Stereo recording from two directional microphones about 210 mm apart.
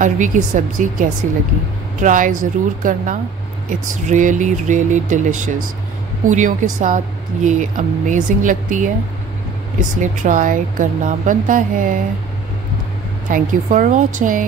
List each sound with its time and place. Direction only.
0.0 s a woman's voice: 40° right (ahead or behind)
6.2 s a woman's voice: 35° right (ahead or behind)
13.3 s a woman's voice: 40° right (ahead or behind)